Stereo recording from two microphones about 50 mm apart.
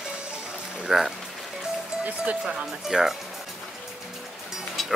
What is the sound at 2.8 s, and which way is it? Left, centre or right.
Speech, centre.